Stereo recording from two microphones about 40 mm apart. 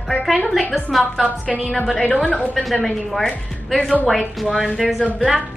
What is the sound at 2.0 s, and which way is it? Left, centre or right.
Speech, left.